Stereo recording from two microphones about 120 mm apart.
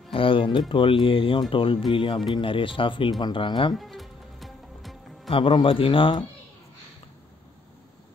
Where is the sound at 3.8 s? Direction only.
Centre (ahead or behind).